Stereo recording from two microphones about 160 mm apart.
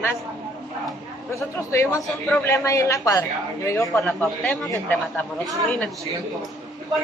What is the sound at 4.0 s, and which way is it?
A man's voice, 5° left (ahead or behind).